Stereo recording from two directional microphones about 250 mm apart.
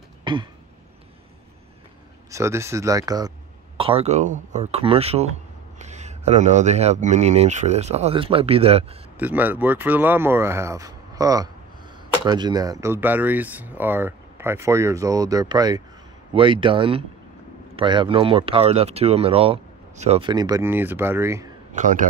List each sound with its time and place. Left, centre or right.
0.2 s a sound: centre
2.3 s speech: centre
9.2 s speech: centre
21.7 s a man's voice: right